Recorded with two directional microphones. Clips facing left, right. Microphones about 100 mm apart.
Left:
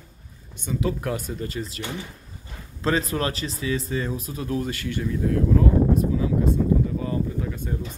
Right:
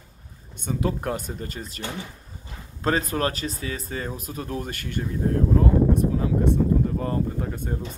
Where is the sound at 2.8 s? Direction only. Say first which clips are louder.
Even; 40° right (ahead or behind).